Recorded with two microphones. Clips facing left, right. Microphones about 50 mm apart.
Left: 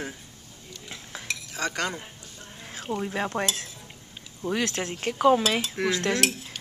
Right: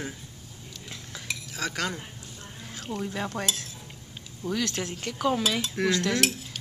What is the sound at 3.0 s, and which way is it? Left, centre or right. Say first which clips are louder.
Cutlery: left 3 dB; left.